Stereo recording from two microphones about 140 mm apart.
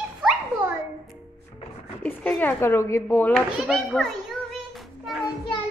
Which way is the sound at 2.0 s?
10° left (ahead or behind).